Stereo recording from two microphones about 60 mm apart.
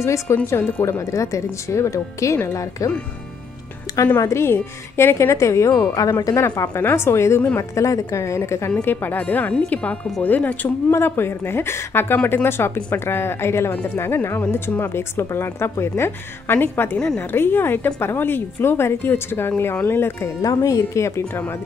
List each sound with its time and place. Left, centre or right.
0.0 s speech: left
4.0 s speech: left
4.3 s speech: left
5.9 s speech: left
6.7 s speech: left
7.5 s speech: left
8.8 s a woman's voice: left
10.9 s a woman's voice: left
20.4 s speech: left